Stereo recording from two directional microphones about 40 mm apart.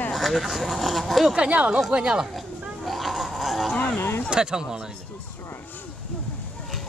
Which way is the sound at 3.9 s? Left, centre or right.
Left.